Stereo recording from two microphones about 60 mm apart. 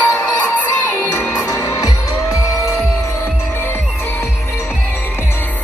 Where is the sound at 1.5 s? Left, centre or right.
Left.